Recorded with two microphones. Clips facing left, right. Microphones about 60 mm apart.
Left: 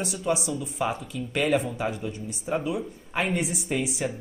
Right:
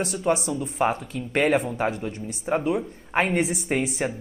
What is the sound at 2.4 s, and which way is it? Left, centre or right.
A man's voice, right.